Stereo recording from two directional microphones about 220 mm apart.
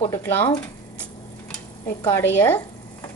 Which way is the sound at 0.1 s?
10° left (ahead or behind).